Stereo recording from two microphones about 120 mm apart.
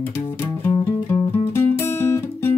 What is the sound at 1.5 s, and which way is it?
Music, 20° left (ahead or behind).